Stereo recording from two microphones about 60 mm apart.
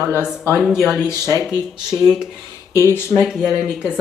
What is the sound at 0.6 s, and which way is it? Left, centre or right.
Speech, centre.